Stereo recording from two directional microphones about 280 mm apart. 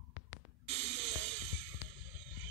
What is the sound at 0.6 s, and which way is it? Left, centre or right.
Music, right.